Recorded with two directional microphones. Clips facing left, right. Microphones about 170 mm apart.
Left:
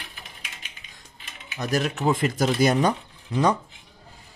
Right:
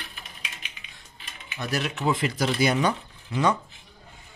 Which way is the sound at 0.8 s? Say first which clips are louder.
Even; 40° left (ahead or behind).